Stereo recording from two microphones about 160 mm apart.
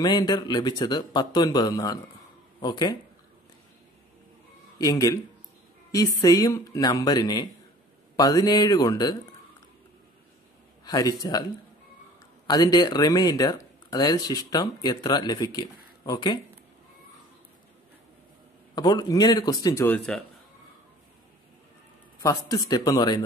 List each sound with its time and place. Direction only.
0.0 s speech: 25° left (ahead or behind)
4.7 s speech: 25° left (ahead or behind)
10.9 s speech: 25° left (ahead or behind)
12.4 s speech: 25° left (ahead or behind)
18.8 s speech: 25° left (ahead or behind); by 20.2 s 10° left (ahead or behind)
22.2 s speech: 20° left (ahead or behind)